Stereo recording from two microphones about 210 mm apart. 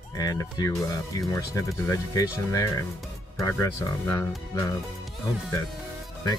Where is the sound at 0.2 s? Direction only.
15° left (ahead or behind).